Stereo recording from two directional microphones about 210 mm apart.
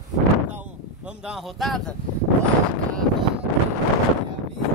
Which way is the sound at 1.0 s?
5° right (ahead or behind).